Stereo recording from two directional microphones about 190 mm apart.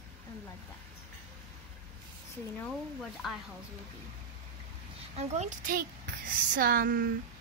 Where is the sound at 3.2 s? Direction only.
Centre (ahead or behind).